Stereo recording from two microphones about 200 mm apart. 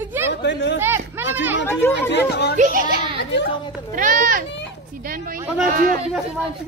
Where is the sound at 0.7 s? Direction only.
10° right (ahead or behind).